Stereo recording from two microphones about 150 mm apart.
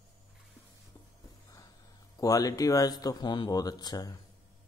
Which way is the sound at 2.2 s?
25° left (ahead or behind).